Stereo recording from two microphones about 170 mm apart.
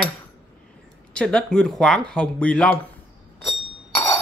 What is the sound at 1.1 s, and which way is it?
Speech, 5° left (ahead or behind).